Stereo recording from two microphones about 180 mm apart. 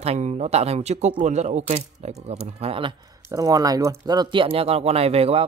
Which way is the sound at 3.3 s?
20° right (ahead or behind).